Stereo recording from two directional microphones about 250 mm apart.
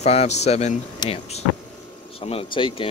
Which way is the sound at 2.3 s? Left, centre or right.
Left.